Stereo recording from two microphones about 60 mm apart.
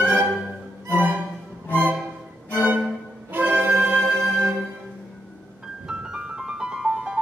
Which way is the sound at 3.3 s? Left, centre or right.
Right.